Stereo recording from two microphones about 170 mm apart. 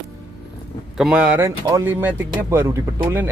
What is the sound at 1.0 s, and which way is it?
Speech, 5° right (ahead or behind).